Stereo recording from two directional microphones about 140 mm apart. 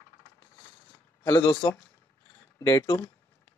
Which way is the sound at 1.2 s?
30° left (ahead or behind).